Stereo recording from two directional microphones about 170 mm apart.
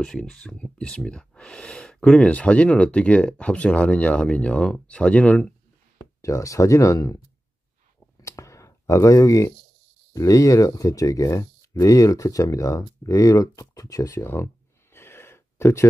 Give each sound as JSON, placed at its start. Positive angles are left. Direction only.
{"t": 0.0, "sound": "speech", "side_deg": 5}
{"t": 8.2, "sound": "clicking", "side_deg": 20}
{"t": 10.1, "sound": "speech", "side_deg": 20}